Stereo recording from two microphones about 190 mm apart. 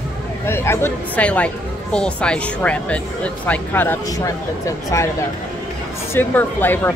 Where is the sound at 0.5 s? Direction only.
15° left (ahead or behind).